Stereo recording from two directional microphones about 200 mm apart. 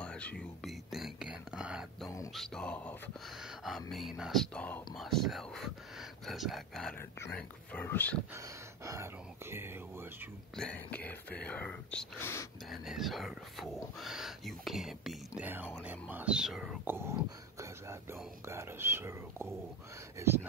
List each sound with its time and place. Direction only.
0.0 s whispering: 5° left (ahead or behind)
2.0 s music: 15° left (ahead or behind)
2.3 s speech: centre (ahead or behind)
8.4 s speech: 15° right (ahead or behind)
10.5 s speech: 5° left (ahead or behind)
12.7 s speech: centre (ahead or behind)